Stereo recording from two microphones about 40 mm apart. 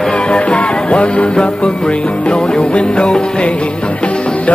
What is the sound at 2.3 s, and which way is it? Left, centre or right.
Music, left.